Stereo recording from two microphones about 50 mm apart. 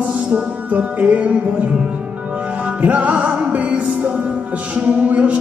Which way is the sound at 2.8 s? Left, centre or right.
Right.